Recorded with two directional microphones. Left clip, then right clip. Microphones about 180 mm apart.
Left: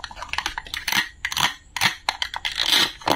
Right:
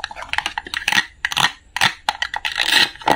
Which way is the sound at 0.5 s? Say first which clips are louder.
Right 6 dB; 15° right (ahead or behind).